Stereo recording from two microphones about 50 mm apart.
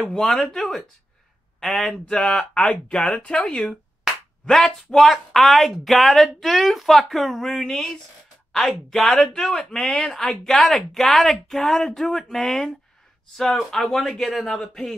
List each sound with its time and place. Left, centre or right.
0.1 s speech: centre
2.0 s speech: centre